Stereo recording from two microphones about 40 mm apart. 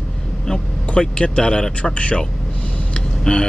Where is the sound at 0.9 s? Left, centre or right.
Left.